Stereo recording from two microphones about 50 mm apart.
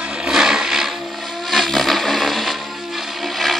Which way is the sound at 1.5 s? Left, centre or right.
Centre.